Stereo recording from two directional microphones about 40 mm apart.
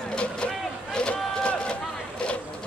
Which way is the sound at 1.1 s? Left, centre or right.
Left.